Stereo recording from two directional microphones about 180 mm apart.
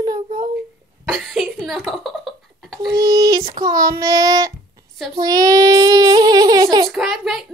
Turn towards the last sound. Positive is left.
turn(degrees=0)  # may be behind; listen again after turning